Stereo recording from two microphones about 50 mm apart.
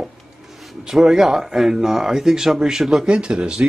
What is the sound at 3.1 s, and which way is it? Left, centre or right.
Speech, centre.